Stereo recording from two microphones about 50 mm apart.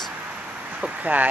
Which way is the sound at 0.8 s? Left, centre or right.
Right.